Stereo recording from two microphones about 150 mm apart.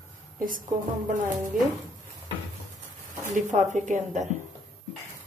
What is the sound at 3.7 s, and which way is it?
Speech, 55° right (ahead or behind).